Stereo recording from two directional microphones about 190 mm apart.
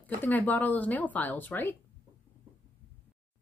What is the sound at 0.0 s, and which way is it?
Speech, 10° left (ahead or behind).